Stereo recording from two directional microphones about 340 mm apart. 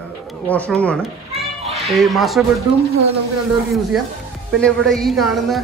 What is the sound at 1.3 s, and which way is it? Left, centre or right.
Children playing, centre.